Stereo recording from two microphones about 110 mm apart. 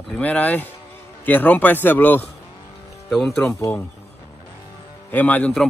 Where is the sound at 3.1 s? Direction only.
5° left (ahead or behind).